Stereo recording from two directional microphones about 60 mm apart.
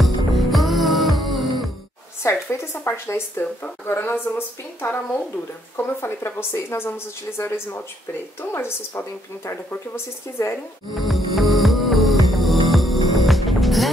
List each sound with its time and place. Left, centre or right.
0.0 s music: centre
2.2 s a woman's voice: left
5.9 s a woman's voice: left
11.0 s hum: centre